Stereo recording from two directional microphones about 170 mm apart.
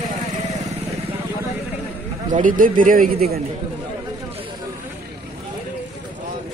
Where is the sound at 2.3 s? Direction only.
55° right (ahead or behind).